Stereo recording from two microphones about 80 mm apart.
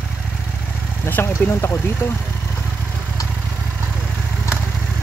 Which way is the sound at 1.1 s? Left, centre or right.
Left.